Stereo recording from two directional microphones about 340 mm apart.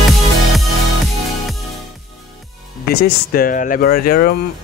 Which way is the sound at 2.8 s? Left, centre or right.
Left.